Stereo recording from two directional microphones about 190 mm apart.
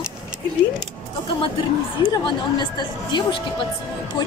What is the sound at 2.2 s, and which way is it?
Speech, 25° left (ahead or behind).